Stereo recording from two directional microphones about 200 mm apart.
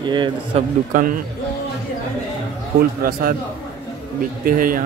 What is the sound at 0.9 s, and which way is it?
Speech, 40° right (ahead or behind).